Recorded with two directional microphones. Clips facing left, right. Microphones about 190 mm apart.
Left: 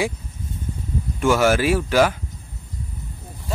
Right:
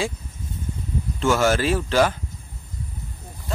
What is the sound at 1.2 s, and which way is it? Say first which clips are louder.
Speech: left 2 dB; 10° left (ahead or behind).